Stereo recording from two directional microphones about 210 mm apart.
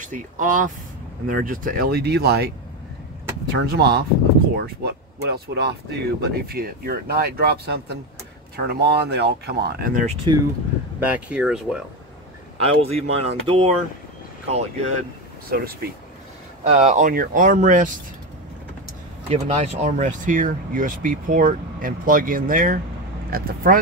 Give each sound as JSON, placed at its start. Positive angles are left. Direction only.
{"t": 0.1, "sound": "speech", "side_deg": -40}
{"t": 3.7, "sound": "speech", "side_deg": -50}
{"t": 11.0, "sound": "speech", "side_deg": -5}
{"t": 12.5, "sound": "speech", "side_deg": -30}
{"t": 15.5, "sound": "speech", "side_deg": -45}
{"t": 16.6, "sound": "speech", "side_deg": -30}
{"t": 19.2, "sound": "speech", "side_deg": -30}